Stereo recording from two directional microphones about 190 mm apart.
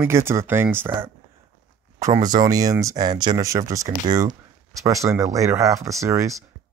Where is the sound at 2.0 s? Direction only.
20° right (ahead or behind).